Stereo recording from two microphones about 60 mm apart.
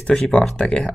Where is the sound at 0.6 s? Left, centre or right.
Centre.